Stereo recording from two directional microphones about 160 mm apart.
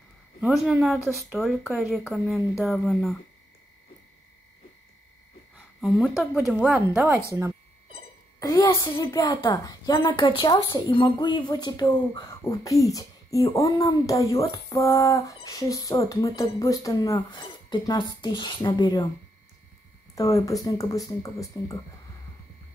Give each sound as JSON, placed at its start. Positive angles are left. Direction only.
{"t": 0.5, "sound": "speech", "side_deg": 0}
{"t": 5.8, "sound": "speech", "side_deg": -5}
{"t": 8.4, "sound": "a woman's voice", "side_deg": 20}
{"t": 20.2, "sound": "a woman's voice", "side_deg": 20}